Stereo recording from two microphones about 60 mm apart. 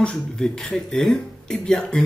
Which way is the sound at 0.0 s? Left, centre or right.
Centre.